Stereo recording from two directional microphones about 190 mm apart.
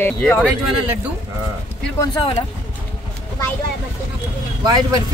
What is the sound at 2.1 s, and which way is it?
Speech, 25° left (ahead or behind).